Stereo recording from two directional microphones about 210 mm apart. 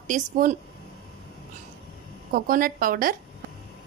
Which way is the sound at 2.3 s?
40° right (ahead or behind).